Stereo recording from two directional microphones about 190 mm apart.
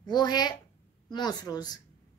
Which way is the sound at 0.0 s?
20° left (ahead or behind).